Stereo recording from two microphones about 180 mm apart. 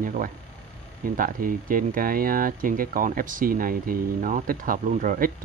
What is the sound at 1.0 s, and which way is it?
Speech, 50° right (ahead or behind).